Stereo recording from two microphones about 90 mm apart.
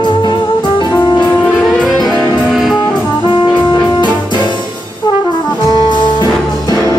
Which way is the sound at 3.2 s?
60° left (ahead or behind).